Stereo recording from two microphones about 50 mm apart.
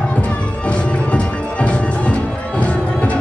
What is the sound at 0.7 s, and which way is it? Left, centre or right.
Music, left.